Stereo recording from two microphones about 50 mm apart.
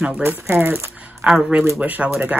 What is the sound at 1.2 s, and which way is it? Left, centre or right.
Speech, right.